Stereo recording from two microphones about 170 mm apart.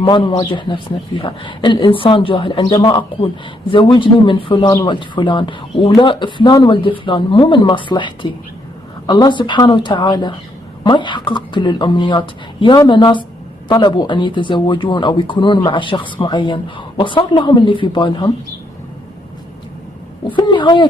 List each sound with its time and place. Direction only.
0.0 s a man's voice: 25° left (ahead or behind)
20.3 s a man's voice: 25° left (ahead or behind)